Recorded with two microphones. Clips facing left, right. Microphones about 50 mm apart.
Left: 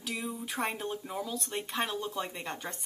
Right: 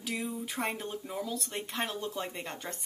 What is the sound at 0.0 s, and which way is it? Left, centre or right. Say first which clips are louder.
Speech: right 1 dB; centre.